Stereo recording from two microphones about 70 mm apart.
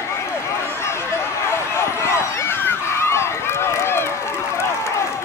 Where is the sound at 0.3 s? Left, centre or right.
Left.